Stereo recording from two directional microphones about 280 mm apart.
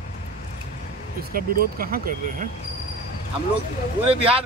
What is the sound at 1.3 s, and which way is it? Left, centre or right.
Speech, right.